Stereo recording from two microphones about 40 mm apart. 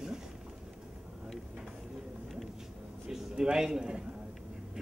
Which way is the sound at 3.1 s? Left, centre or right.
Centre.